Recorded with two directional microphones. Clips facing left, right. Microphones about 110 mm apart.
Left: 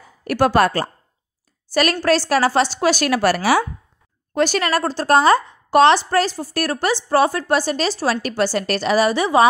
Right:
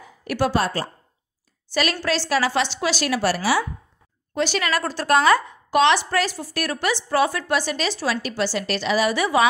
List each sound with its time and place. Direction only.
0.2 s speech: 50° left (ahead or behind)
1.7 s a woman's voice: 45° left (ahead or behind)
4.3 s a woman's voice: 50° left (ahead or behind)
9.1 s a woman's voice: 30° left (ahead or behind)